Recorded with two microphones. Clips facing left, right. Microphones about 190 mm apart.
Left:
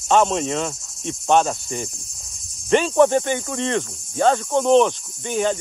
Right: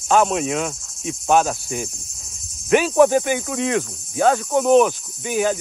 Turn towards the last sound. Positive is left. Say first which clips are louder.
# right 1 dB
turn(degrees=-5)  # may be behind; listen again after turning